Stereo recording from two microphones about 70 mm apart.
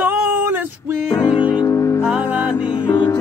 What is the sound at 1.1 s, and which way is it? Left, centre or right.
Music, left.